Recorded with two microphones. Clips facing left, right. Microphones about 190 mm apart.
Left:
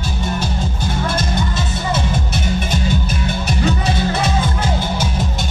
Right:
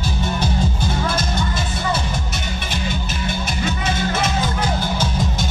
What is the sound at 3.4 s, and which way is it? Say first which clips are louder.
Music: left 6 dB; 40° left (ahead or behind).